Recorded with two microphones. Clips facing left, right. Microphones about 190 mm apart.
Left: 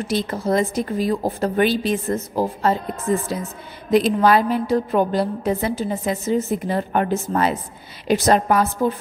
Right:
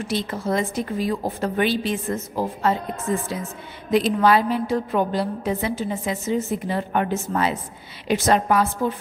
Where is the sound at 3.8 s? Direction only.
40° left (ahead or behind).